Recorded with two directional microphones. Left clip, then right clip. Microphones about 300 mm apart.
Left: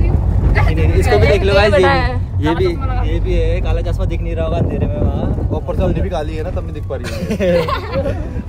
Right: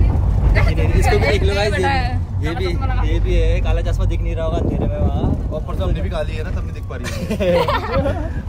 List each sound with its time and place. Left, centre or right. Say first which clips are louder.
0.6 s vehicle: left 3 dB; centre
1.3 s a sound: left 7 dB; left
3.1 s speech: left 3 dB; centre
7.2 s speech: left 2 dB; centre
7.5 s speech: even; right